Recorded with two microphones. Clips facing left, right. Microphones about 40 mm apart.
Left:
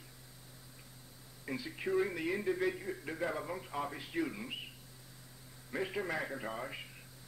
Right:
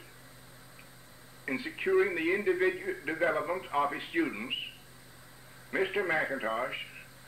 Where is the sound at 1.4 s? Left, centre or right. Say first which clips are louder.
Right 7 dB; right.